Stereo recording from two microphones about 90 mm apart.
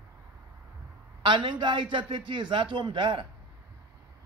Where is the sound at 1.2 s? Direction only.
60° right (ahead or behind).